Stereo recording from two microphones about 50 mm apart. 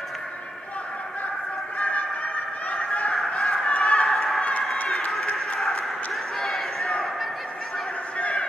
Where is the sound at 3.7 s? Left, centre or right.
Left.